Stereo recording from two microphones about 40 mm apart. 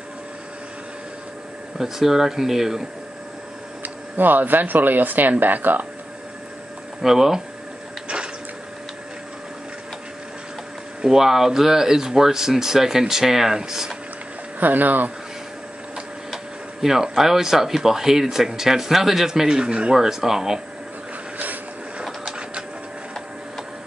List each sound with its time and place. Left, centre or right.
1.8 s speech: centre
3.8 s speech: right
7.0 s speech: centre
11.1 s speech: centre
14.6 s speech: right
16.8 s speech: centre; by 20.0 s right
20.0 s speech: centre